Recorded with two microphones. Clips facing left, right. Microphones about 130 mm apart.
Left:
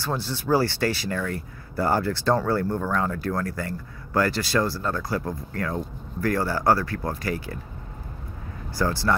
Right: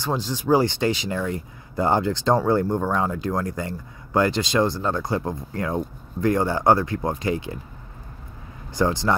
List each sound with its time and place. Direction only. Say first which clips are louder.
0.0 s speech: right 3 dB; 15° right (ahead or behind)
8.7 s speech: right 3 dB; 20° right (ahead or behind)